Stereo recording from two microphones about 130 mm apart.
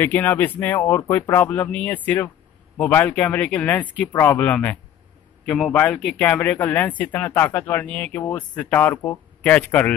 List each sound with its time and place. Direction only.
0.0 s speech: 15° left (ahead or behind)